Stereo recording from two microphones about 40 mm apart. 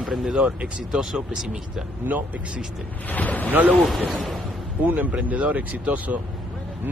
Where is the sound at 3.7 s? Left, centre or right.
Centre.